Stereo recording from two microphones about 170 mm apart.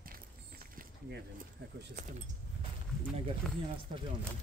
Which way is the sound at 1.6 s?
70° right (ahead or behind).